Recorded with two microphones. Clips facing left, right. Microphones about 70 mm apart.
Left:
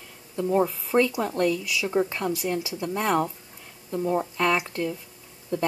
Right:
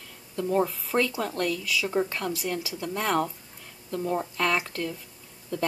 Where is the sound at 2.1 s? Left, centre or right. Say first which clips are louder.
Left 3 dB; centre.